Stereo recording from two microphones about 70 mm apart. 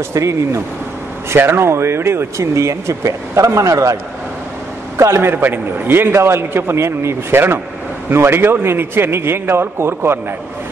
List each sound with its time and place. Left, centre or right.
0.1 s a man's voice: right
5.3 s a man's voice: right